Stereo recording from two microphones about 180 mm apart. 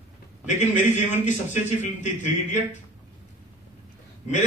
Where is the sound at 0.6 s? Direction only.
45° left (ahead or behind).